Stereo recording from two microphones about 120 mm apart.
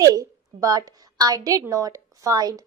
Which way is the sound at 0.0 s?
30° right (ahead or behind).